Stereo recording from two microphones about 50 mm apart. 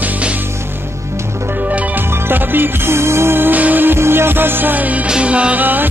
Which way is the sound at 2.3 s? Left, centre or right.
Right.